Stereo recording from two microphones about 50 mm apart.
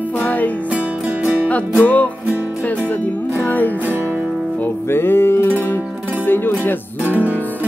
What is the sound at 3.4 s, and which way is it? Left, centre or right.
Music, left.